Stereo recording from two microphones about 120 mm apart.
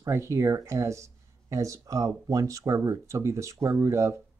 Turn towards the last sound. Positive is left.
turn(degrees=-25)  # may be behind; listen again after turning